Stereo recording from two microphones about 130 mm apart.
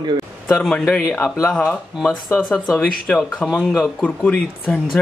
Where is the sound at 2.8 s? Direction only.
10° left (ahead or behind).